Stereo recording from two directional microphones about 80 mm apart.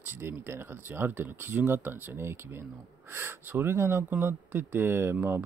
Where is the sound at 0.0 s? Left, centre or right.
Right.